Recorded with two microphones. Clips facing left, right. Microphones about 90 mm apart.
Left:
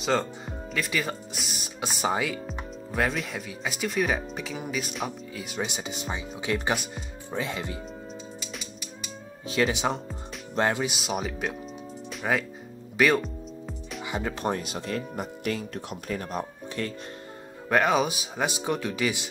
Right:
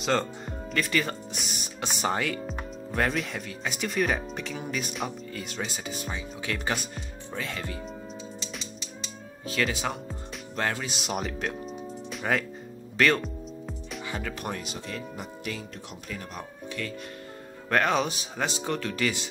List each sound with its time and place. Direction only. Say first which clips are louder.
0.1 s speech: left 1 dB; 5° left (ahead or behind)
8.4 s music: even; 10° left (ahead or behind)
9.5 s speech: left 4 dB; 20° left (ahead or behind)
10.9 s speech: left 1 dB; centre (ahead or behind)
12.1 s music: left 1 dB; 5° left (ahead or behind)
12.9 s speech: left 1 dB; 10° left (ahead or behind)
13.2 s music: even; centre (ahead or behind)
14.0 s speech: left 4 dB; 15° left (ahead or behind)
14.6 s speech: left 4 dB; 45° left (ahead or behind)
16.1 s speech: left 7 dB; 35° left (ahead or behind)
17.6 s speech: left 2 dB; 10° left (ahead or behind)